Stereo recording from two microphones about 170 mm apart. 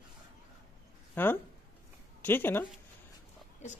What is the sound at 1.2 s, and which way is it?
A man's voice, 10° left (ahead or behind).